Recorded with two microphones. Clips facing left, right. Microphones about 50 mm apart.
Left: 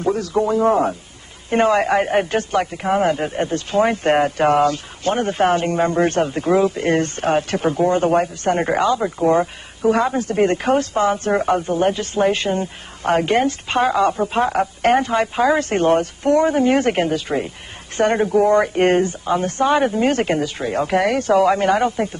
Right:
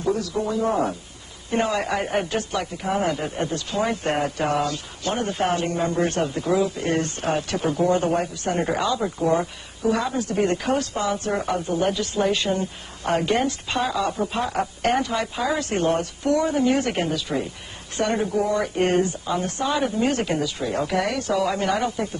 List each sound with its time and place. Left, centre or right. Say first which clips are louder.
0.0 s speech: left 5 dB; left
9.0 s speech: left 5 dB; left